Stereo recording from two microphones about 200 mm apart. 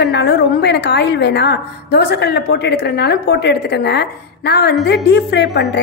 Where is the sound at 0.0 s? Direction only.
60° left (ahead or behind).